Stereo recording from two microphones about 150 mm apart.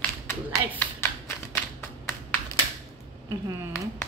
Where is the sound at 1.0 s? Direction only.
15° left (ahead or behind).